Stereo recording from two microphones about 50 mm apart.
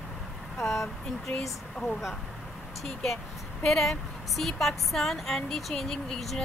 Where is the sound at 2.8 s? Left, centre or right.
Centre.